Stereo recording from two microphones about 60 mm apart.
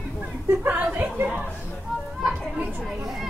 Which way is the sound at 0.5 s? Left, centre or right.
Right.